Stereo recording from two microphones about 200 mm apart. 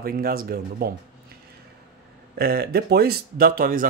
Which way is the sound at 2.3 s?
50° right (ahead or behind).